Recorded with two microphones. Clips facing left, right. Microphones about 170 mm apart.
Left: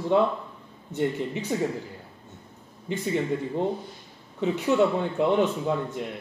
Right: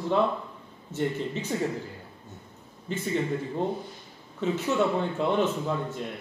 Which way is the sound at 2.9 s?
15° left (ahead or behind).